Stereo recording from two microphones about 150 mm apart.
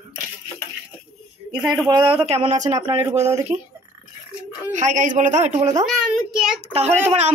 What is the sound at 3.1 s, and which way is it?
Speech, 20° right (ahead or behind).